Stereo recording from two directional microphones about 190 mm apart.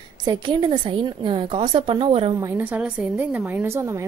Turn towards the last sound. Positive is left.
turn(degrees=-15)  # may be behind; listen again after turning